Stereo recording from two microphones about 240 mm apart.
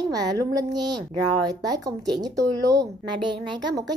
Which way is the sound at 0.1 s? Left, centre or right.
Centre.